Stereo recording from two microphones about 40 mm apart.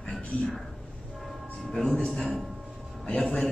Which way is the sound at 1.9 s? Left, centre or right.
Centre.